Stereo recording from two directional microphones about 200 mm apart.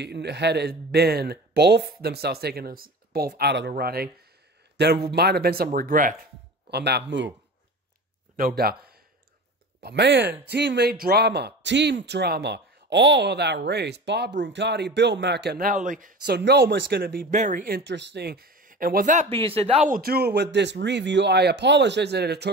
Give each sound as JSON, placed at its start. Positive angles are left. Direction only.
{"t": 0.0, "sound": "a man's voice", "side_deg": -55}
{"t": 6.7, "sound": "speech", "side_deg": -55}
{"t": 8.4, "sound": "a man's voice", "side_deg": -50}
{"t": 19.9, "sound": "speech", "side_deg": -50}